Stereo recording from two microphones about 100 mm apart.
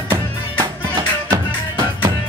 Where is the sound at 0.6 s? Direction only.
40° right (ahead or behind).